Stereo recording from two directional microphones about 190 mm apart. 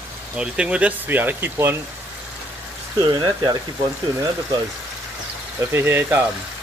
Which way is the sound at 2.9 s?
20° right (ahead or behind).